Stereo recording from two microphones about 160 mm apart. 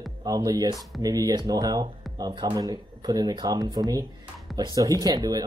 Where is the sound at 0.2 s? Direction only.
25° right (ahead or behind).